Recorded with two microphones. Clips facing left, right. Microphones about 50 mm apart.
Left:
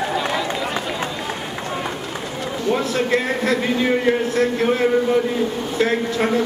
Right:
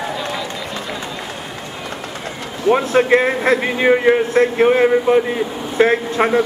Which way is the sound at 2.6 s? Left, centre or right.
Right.